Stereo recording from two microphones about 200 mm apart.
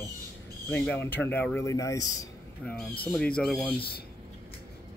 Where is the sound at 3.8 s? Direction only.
50° left (ahead or behind).